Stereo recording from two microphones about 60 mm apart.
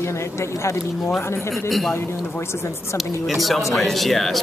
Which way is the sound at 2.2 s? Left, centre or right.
Left.